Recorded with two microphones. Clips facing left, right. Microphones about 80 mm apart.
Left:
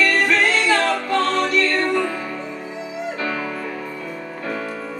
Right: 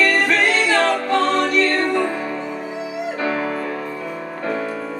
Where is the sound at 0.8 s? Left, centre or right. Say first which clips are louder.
Right 2 dB; centre.